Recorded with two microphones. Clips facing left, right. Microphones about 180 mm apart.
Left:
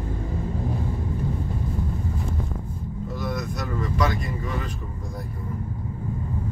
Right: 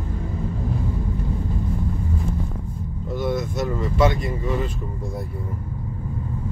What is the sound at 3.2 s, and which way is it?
Vehicle, 25° right (ahead or behind).